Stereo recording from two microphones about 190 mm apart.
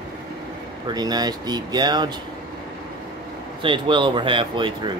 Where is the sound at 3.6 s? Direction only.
25° right (ahead or behind).